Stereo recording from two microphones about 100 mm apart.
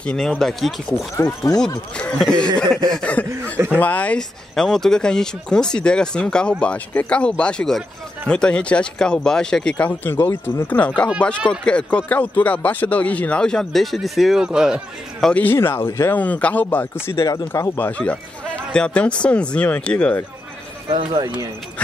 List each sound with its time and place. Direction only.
0.0 s speech: 10° left (ahead or behind)
1.1 s speech: 40° left (ahead or behind)
2.0 s speech: 10° left (ahead or behind); by 15.2 s 5° right (ahead or behind)
15.2 s speech: 15° left (ahead or behind)
20.9 s speech: 55° right (ahead or behind)